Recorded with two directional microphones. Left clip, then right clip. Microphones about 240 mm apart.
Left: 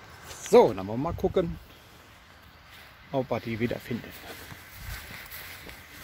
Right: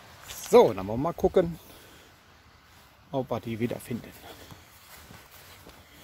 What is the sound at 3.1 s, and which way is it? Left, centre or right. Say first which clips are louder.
Speech: left 2 dB; centre.